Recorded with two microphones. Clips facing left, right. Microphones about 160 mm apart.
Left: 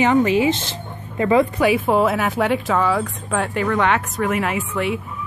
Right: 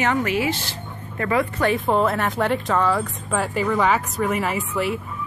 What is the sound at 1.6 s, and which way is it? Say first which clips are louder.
A woman's voice: left 3 dB; 5° left (ahead or behind).